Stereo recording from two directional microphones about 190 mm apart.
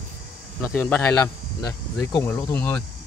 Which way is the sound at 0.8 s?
10° left (ahead or behind).